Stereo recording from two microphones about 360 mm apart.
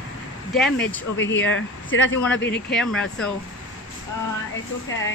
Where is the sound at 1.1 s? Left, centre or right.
Left.